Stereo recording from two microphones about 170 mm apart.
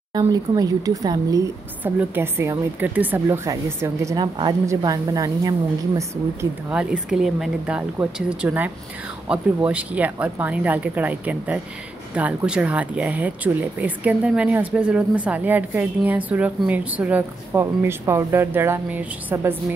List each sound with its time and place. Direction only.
0.1 s speech: 20° right (ahead or behind)
6.7 s speech: 5° right (ahead or behind)